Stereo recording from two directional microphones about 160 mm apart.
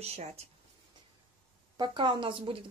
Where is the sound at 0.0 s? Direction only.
40° right (ahead or behind).